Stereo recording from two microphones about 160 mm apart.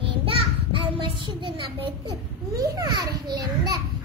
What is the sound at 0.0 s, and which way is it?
A child's voice, 35° right (ahead or behind).